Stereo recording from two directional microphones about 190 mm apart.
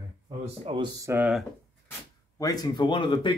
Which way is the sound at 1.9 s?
20° left (ahead or behind).